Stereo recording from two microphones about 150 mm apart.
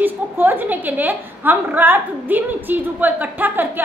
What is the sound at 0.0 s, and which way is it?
A woman's voice, 15° right (ahead or behind).